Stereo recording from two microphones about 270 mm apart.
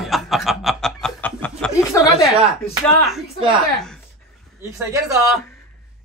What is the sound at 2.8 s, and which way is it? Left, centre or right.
Speech, centre.